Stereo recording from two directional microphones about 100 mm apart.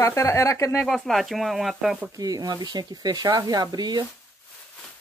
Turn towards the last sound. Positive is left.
turn(degrees=-45)  # may be behind; listen again after turning